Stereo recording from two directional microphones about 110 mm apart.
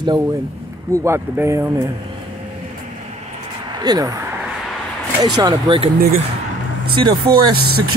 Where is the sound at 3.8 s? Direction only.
40° right (ahead or behind).